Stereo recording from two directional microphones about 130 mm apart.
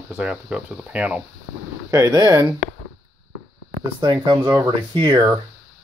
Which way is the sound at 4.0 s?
35° right (ahead or behind).